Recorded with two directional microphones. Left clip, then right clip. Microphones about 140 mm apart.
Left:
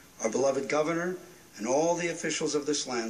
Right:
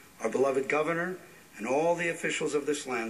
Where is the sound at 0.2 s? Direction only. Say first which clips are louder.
Even; 25° right (ahead or behind).